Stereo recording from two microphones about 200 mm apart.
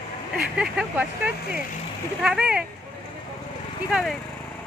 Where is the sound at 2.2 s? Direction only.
5° right (ahead or behind).